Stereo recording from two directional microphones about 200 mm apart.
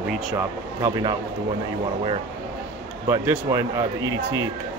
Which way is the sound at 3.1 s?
15° right (ahead or behind).